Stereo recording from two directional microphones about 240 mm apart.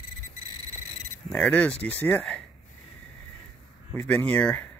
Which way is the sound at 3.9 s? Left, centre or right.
Centre.